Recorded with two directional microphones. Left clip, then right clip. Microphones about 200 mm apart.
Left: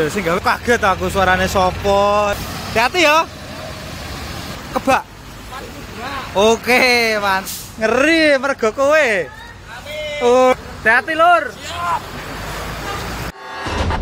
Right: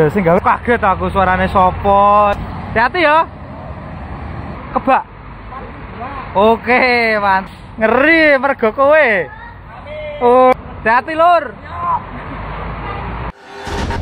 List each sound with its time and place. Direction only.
0.0 s speech: 25° right (ahead or behind)
0.5 s speech: 10° left (ahead or behind)
4.7 s speech: 15° left (ahead or behind)
6.3 s speech: 15° left (ahead or behind)
10.8 s speech: 10° right (ahead or behind)